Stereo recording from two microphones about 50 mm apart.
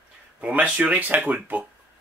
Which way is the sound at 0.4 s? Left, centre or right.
Right.